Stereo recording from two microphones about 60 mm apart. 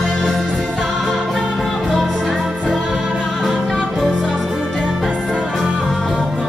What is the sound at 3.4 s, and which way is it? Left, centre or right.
Music, centre.